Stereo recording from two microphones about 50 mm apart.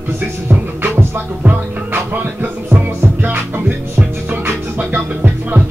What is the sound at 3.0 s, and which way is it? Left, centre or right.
Music, right.